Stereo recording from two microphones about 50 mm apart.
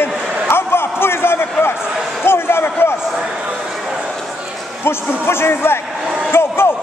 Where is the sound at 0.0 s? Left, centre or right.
Left.